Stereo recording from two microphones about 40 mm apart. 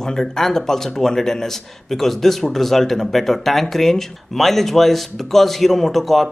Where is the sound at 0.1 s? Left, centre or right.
Centre.